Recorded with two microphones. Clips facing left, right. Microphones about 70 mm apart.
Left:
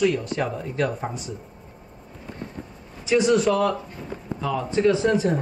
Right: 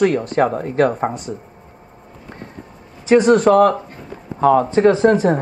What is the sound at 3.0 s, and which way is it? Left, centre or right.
Speech, right.